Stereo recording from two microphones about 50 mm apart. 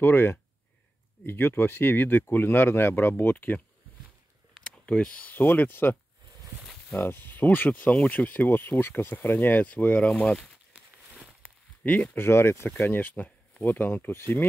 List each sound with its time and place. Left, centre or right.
0.0 s speech: left
4.6 s speech: left
5.3 s speech: left
7.0 s speech: left
7.7 s speech: left
11.8 s speech: left
12.2 s speech: left
12.8 s speech: left
13.1 s a sound: left
13.7 s speech: left